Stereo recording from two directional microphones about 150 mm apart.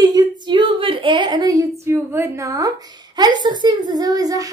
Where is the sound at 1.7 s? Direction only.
15° right (ahead or behind).